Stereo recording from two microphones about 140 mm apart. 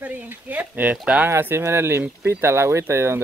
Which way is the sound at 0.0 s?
10° right (ahead or behind).